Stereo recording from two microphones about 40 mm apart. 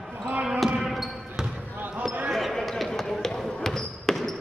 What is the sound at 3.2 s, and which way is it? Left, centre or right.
Basketball bounce, centre.